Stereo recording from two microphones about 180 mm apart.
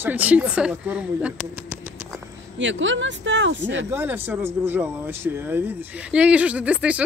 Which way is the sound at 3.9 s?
10° right (ahead or behind).